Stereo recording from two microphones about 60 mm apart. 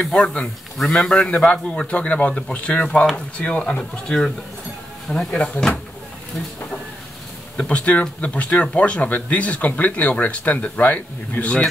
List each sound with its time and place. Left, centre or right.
0.0 s a man's voice: centre
5.3 s a man's voice: centre
7.5 s speech: centre